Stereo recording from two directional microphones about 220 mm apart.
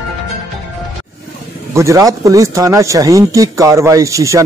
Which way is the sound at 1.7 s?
15° right (ahead or behind).